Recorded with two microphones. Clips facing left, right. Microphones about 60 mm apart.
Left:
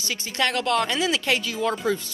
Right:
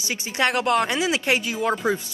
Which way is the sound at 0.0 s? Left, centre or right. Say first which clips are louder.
Right 2 dB; centre.